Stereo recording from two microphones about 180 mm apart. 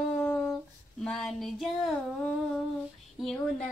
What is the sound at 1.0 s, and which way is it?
Female singing, centre (ahead or behind).